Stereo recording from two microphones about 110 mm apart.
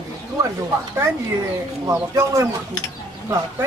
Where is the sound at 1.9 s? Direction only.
25° right (ahead or behind).